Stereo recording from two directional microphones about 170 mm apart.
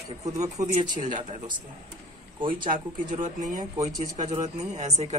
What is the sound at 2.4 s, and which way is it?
Speech, 30° right (ahead or behind).